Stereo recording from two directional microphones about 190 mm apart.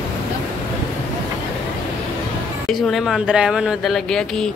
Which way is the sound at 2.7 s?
Centre (ahead or behind).